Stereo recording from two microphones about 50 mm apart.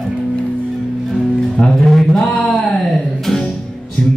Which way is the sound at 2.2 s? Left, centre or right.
Left.